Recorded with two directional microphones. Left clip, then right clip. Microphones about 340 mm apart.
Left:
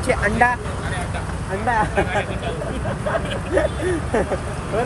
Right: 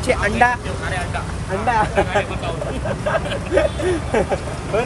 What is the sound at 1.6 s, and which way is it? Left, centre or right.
Speech, centre.